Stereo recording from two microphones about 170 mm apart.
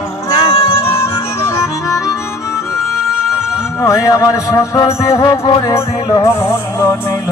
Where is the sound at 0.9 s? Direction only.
15° left (ahead or behind).